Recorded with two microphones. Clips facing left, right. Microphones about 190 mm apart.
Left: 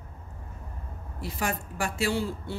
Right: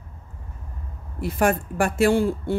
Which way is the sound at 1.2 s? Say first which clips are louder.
Right 10 dB; 55° right (ahead or behind).